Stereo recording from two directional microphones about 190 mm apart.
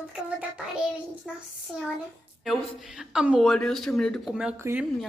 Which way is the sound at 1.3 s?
Centre (ahead or behind).